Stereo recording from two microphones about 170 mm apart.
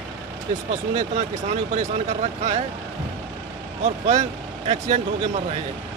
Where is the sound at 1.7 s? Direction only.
45° right (ahead or behind).